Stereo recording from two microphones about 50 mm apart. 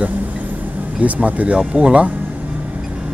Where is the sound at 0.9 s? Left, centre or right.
Right.